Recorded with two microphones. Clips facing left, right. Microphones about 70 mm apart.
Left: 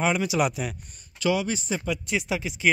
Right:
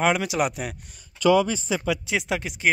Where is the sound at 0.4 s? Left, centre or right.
Right.